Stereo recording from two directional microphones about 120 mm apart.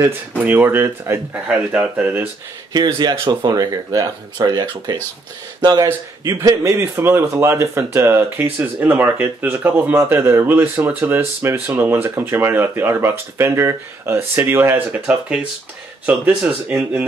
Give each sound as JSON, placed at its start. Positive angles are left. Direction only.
{"t": 0.4, "sound": "speech", "side_deg": -15}
{"t": 1.3, "sound": "speech", "side_deg": -10}
{"t": 2.7, "sound": "speech", "side_deg": -35}